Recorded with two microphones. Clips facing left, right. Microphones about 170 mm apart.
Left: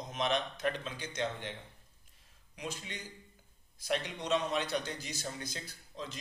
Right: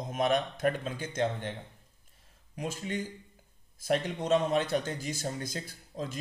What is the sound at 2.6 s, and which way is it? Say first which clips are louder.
A man's voice: right 8 dB; 45° right (ahead or behind).